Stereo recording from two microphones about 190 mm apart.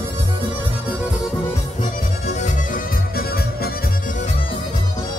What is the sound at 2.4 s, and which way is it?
Music, 50° left (ahead or behind).